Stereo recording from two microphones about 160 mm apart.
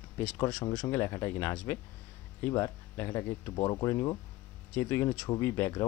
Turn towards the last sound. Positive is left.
turn(degrees=15)  # may be behind; listen again after turning